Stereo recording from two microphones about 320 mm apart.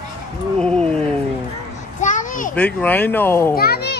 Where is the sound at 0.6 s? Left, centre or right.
Centre.